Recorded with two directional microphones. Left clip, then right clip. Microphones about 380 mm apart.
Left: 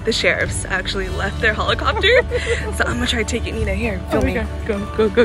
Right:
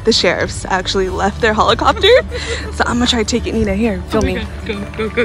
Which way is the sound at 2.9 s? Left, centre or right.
Centre.